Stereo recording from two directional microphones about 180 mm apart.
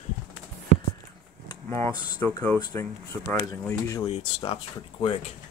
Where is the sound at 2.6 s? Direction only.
15° left (ahead or behind).